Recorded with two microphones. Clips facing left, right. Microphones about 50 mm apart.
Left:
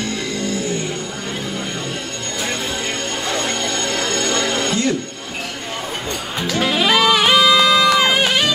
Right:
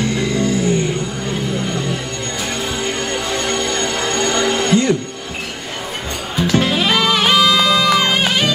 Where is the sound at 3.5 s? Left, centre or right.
Right.